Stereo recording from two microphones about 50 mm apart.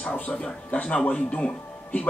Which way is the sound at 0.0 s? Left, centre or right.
Left.